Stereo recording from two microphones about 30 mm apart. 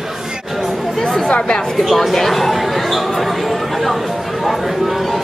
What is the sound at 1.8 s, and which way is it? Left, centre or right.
Speech, centre.